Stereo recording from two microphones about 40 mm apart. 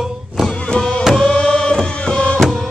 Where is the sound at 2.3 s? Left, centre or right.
Centre.